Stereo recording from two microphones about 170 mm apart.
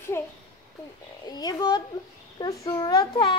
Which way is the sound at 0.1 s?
15° left (ahead or behind).